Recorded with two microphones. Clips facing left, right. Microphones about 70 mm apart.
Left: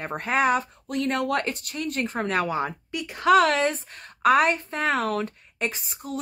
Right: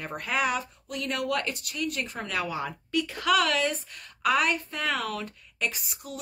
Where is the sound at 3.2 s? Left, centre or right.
Left.